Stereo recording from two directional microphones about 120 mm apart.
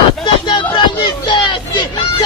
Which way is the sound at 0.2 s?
40° left (ahead or behind).